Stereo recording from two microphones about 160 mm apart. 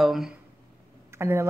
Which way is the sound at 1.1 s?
15° right (ahead or behind).